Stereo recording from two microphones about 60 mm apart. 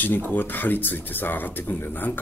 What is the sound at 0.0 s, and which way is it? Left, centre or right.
Speech, left.